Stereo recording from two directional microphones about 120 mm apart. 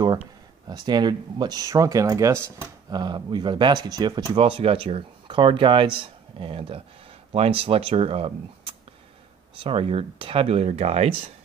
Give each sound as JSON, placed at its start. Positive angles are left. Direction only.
{"t": 0.7, "sound": "speech", "side_deg": -35}
{"t": 4.4, "sound": "speech", "side_deg": -50}